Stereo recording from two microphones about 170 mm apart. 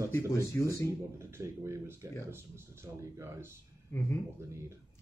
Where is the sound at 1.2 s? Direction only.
15° right (ahead or behind).